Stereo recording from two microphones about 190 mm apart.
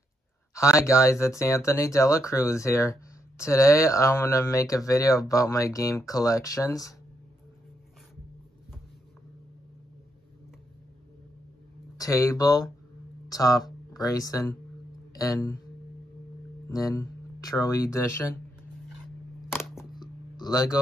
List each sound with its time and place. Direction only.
0.6 s speech: 15° left (ahead or behind)
12.0 s speech: 15° left (ahead or behind)
16.6 s speech: 15° left (ahead or behind)
20.0 s a sound: 20° left (ahead or behind)